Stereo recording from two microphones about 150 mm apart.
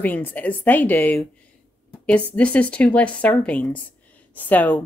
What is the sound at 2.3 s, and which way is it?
Speech, 10° left (ahead or behind).